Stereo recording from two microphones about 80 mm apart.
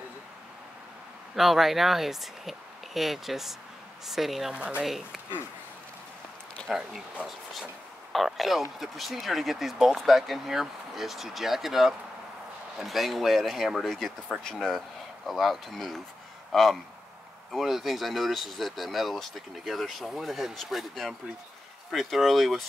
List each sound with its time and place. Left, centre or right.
1.3 s speech: centre
4.6 s speech: centre
4.8 s speech: centre
6.7 s speech: centre
8.1 s speech: centre